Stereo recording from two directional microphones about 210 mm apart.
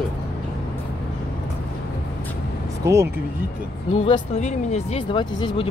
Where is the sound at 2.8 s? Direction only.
15° right (ahead or behind).